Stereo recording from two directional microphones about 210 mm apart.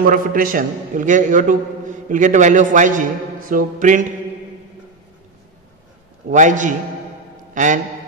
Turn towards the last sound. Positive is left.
turn(degrees=-35)  # may be behind; listen again after turning